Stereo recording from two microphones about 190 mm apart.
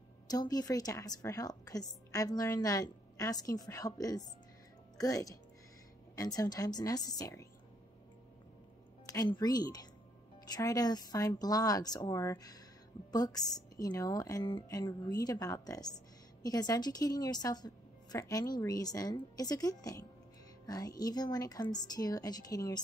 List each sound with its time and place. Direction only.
0.3 s a woman's voice: 20° left (ahead or behind)
9.0 s a woman's voice: 20° left (ahead or behind)